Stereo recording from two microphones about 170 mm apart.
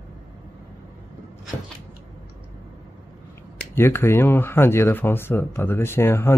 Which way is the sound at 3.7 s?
15° left (ahead or behind).